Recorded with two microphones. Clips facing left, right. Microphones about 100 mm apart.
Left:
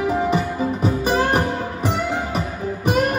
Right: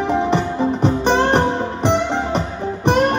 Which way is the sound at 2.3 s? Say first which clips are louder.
Right 3 dB; 5° left (ahead or behind).